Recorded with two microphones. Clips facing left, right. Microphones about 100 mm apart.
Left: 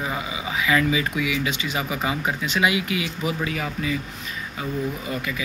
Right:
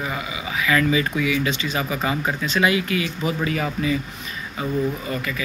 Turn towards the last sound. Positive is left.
turn(degrees=15)  # may be behind; listen again after turning